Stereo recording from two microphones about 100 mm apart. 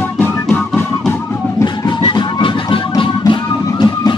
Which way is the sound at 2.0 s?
55° left (ahead or behind).